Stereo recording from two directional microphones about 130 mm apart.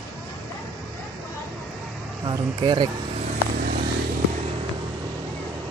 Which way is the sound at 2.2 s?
35° right (ahead or behind).